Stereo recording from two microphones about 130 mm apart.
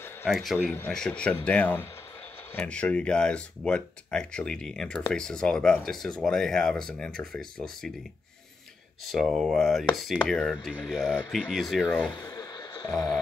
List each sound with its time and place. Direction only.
0.3 s speech: centre (ahead or behind)
0.6 s speech: 10° left (ahead or behind)
9.0 s speech: centre (ahead or behind)
12.2 s a sound: 30° left (ahead or behind)